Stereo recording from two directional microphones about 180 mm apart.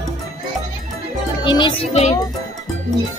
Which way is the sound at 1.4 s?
25° left (ahead or behind).